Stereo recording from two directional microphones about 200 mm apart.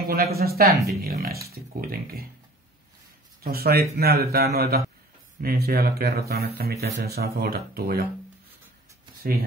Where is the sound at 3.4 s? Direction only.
50° right (ahead or behind).